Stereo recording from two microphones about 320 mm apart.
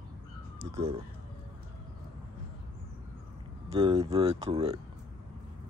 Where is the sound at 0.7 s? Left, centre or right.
Centre.